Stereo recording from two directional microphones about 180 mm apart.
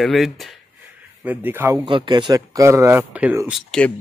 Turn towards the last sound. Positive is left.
turn(degrees=5)  # may be behind; listen again after turning